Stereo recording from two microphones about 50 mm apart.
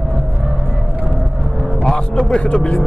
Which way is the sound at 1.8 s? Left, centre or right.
Centre.